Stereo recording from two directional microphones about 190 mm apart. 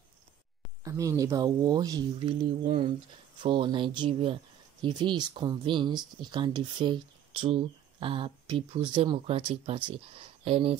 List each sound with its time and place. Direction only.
0.8 s speech: 15° right (ahead or behind)